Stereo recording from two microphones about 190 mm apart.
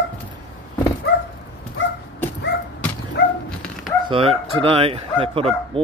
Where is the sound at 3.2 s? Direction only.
55° left (ahead or behind).